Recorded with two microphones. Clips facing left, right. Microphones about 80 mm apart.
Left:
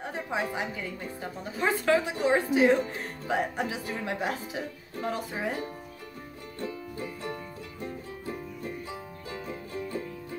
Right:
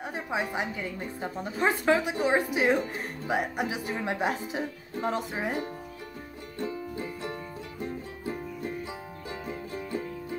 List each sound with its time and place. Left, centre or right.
0.0 s a woman's voice: centre